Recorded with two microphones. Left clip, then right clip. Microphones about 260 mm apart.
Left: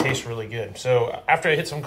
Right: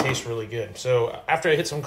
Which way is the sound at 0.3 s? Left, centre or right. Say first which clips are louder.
Right 1 dB; centre.